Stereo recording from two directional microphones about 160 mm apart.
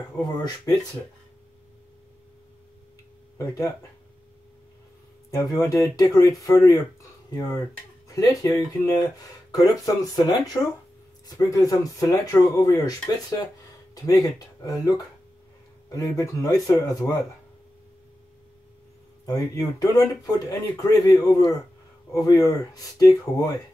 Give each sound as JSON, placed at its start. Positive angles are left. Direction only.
{"t": 0.2, "sound": "speech", "side_deg": 25}
{"t": 3.3, "sound": "speech", "side_deg": 20}
{"t": 5.3, "sound": "speech", "side_deg": 20}
{"t": 14.0, "sound": "speech", "side_deg": 20}
{"t": 19.2, "sound": "speech", "side_deg": 25}